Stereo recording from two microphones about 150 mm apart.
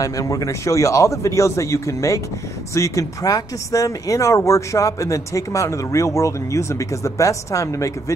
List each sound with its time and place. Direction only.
0.0 s speech: 20° left (ahead or behind)